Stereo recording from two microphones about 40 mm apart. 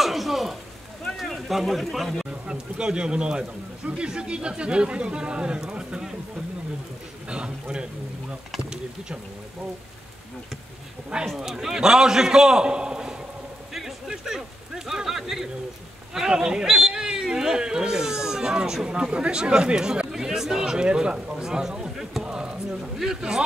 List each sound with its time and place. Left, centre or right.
0.0 s a sound: centre
1.1 s speech: centre
2.4 s speech: right
7.2 s speech: right
11.3 s a man's voice: centre
13.7 s a sound: centre
14.1 s a man's voice: centre
22.2 s basketball bounce: right
22.9 s a man's voice: centre